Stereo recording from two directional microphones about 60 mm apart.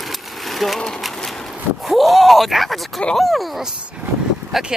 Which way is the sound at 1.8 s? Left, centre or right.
Centre.